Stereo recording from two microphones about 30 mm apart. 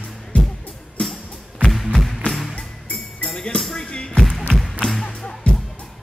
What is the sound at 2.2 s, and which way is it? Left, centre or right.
Music, left.